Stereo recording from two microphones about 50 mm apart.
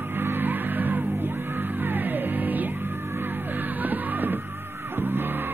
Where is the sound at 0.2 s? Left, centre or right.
Right.